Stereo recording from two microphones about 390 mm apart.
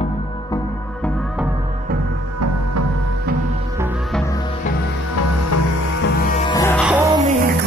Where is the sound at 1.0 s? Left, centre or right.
Centre.